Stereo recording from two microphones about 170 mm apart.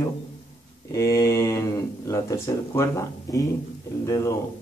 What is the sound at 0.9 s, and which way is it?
Speech, 20° left (ahead or behind).